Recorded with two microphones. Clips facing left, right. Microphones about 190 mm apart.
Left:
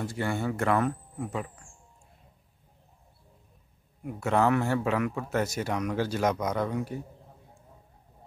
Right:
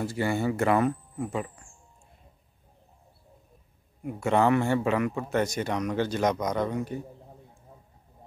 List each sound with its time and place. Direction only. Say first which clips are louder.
0.0 s speech: right 3 dB; 5° right (ahead or behind)
4.0 s speech: right 2 dB; centre (ahead or behind)